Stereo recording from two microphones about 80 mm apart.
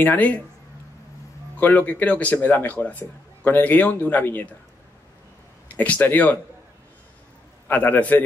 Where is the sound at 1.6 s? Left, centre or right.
Left.